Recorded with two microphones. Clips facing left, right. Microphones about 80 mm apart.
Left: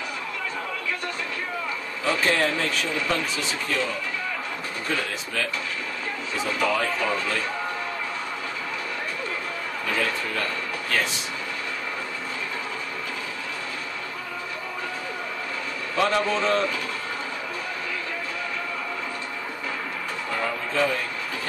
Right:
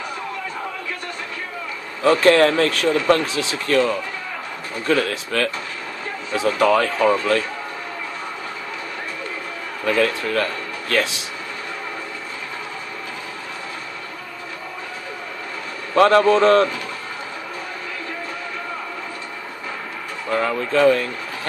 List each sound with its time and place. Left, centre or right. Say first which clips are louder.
2.0 s speech: right 9 dB; right
4.8 s speech: right 10 dB; right
9.8 s speech: right 8 dB; right
10.9 s speech: right 6 dB; right
15.9 s speech: right 10 dB; right
20.3 s speech: right 7 dB; right